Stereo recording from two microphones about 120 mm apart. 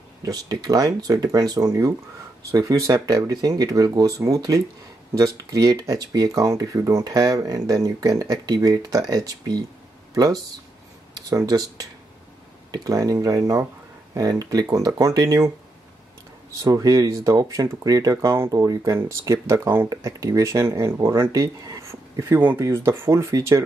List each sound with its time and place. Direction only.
0.2 s speech: 35° right (ahead or behind)
16.6 s speech: 30° right (ahead or behind)